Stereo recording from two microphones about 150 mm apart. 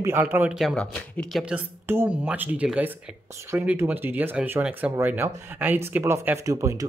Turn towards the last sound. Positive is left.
turn(degrees=-20)  # may be behind; listen again after turning